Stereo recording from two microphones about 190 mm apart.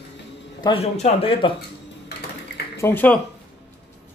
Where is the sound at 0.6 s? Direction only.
30° left (ahead or behind).